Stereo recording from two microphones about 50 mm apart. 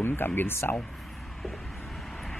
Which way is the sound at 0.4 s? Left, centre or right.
Left.